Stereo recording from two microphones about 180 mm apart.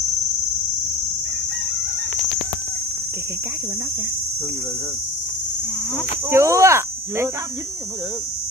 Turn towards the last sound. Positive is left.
turn(degrees=-15)  # may be behind; listen again after turning